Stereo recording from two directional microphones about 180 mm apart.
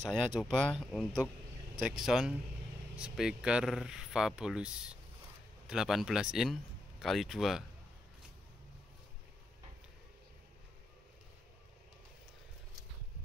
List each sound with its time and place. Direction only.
0.0 s speech: centre (ahead or behind)